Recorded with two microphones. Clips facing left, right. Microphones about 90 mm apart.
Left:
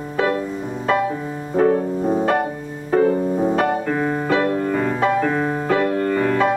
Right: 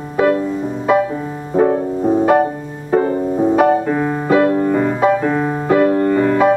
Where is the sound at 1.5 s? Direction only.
15° right (ahead or behind).